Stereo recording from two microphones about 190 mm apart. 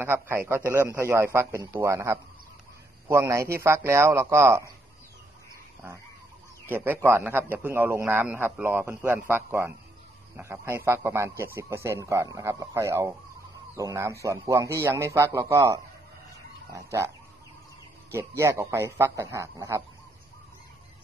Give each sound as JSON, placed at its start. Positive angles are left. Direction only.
{"t": 0.0, "sound": "a man's voice", "side_deg": -10}
{"t": 6.7, "sound": "a man's voice", "side_deg": -10}
{"t": 18.1, "sound": "a man's voice", "side_deg": -15}